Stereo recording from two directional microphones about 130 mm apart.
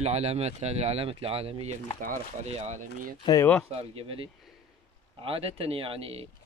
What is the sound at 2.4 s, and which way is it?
Speech, 60° right (ahead or behind).